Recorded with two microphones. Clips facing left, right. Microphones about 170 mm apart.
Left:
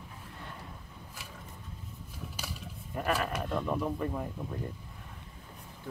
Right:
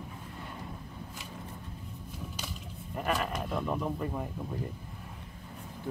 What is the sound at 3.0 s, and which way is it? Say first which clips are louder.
Speech: even; 5° left (ahead or behind).